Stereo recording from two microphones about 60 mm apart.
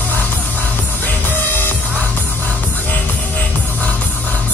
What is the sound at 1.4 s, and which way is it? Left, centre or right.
Music, left.